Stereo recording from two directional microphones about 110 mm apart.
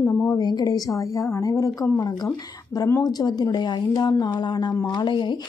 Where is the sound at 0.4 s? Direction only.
40° left (ahead or behind).